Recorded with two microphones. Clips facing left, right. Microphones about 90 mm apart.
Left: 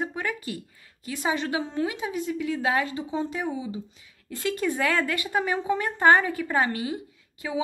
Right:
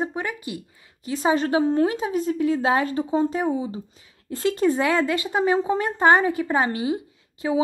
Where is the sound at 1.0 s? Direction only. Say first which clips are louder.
Right 6 dB; 35° right (ahead or behind).